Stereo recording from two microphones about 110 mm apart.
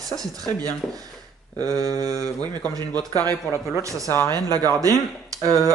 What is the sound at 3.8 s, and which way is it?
Speech, 30° right (ahead or behind).